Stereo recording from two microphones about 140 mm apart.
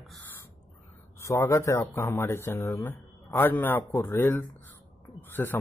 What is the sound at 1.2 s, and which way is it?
Speech, 20° left (ahead or behind).